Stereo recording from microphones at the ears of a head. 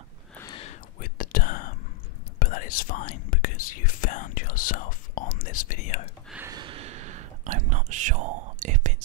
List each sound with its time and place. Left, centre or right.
0.4 s whispering: left
6.4 s whispering: right